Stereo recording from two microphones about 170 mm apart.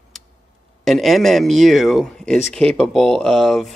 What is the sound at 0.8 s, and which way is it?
A man's voice, centre (ahead or behind).